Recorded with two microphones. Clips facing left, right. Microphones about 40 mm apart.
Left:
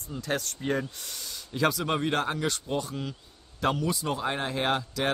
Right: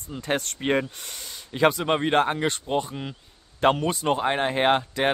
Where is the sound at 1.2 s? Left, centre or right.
Right.